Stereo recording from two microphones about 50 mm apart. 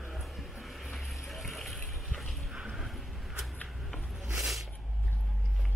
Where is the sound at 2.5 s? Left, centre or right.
Centre.